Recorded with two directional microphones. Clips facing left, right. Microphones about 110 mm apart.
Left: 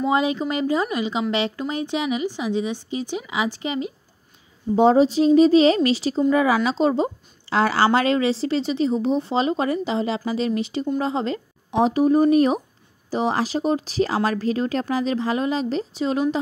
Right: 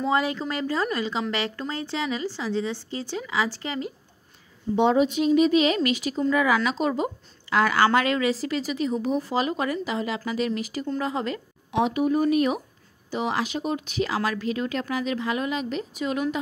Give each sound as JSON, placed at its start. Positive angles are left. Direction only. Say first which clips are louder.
{"t": 0.0, "sound": "speech", "louder": "left 4 dB", "side_deg": 20}
{"t": 4.7, "sound": "a woman's voice", "louder": "left 5 dB", "side_deg": 35}